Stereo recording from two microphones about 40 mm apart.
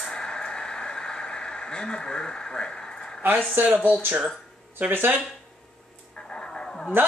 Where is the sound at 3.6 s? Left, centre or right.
Right.